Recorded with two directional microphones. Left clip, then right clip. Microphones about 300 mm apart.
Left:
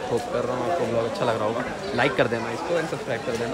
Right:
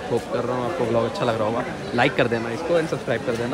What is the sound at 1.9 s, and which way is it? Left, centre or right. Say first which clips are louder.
Speech: right 2 dB; centre.